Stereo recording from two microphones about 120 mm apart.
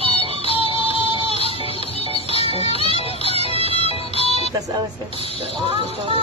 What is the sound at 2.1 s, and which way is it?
Music, 55° left (ahead or behind).